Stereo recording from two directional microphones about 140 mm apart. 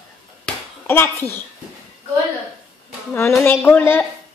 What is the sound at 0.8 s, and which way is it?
Child singing, 15° left (ahead or behind).